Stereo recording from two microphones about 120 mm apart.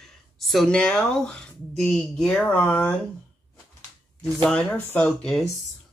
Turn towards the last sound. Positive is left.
turn(degrees=5)  # may be behind; listen again after turning